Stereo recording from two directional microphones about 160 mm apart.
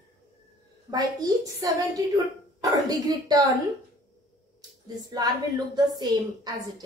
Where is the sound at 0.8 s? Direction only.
25° right (ahead or behind).